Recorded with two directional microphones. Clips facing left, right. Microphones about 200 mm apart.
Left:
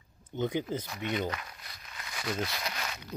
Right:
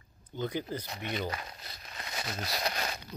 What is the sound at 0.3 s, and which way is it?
Speech, 20° left (ahead or behind).